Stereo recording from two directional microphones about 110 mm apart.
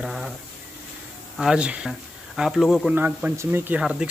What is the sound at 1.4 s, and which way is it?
Speech, 5° right (ahead or behind).